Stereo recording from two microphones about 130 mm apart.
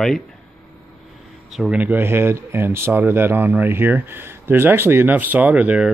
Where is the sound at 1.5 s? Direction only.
5° right (ahead or behind).